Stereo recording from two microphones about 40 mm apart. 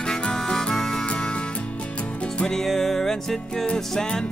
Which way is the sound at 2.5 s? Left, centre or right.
Centre.